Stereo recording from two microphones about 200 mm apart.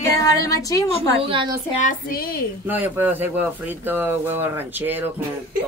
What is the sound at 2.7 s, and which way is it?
Speech, 10° right (ahead or behind).